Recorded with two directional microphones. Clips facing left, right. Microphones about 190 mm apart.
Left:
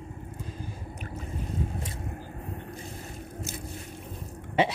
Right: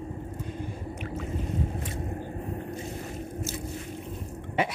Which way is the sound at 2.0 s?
30° right (ahead or behind).